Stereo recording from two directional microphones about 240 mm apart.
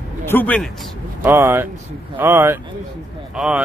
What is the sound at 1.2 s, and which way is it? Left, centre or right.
A man's voice, centre.